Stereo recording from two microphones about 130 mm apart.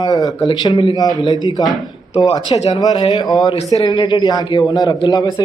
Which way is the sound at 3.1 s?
30° left (ahead or behind).